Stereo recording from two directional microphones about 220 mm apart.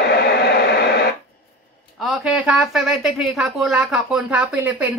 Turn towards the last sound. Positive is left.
turn(degrees=-5)  # may be behind; listen again after turning